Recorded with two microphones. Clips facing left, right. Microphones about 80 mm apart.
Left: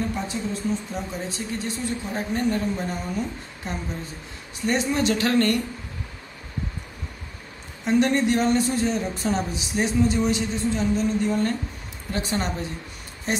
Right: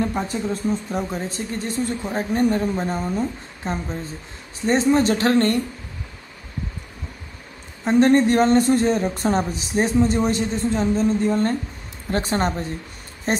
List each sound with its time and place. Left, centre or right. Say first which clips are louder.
0.1 s speech: right 4 dB; right
7.8 s speech: right 5 dB; right